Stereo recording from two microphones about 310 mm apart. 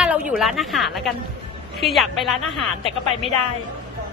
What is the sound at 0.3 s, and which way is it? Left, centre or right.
A woman's voice, centre.